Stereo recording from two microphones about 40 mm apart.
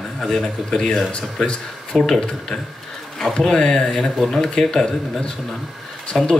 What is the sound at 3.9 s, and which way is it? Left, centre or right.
Speech, centre.